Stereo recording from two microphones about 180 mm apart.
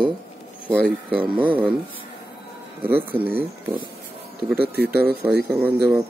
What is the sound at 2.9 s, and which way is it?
Speech, 10° right (ahead or behind).